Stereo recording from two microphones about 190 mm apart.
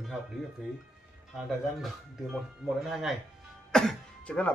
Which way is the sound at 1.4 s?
Centre (ahead or behind).